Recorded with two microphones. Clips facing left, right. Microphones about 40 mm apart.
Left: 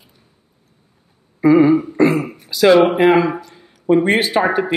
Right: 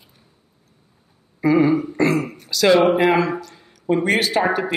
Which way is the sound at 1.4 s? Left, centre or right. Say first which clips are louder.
Left 5 dB; centre.